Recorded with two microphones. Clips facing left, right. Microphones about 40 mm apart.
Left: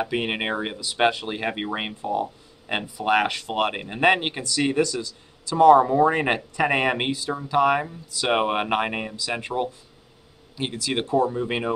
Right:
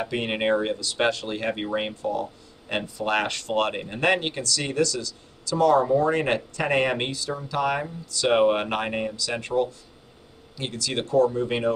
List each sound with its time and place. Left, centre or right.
0.0 s speech: centre